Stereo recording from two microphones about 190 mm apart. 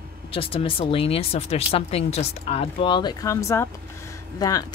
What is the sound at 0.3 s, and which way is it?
Speech, 30° left (ahead or behind).